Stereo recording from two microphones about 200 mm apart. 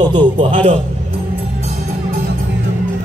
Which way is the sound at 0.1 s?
25° right (ahead or behind).